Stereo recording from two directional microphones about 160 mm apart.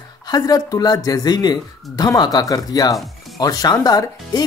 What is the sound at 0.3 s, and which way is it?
Speech, 25° left (ahead or behind).